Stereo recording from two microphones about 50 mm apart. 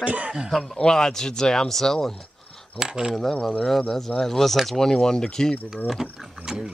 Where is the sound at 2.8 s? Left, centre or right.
Centre.